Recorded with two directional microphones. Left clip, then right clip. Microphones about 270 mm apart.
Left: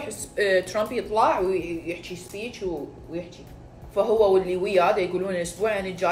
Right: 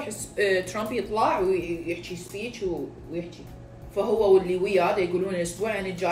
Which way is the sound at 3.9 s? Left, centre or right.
Centre.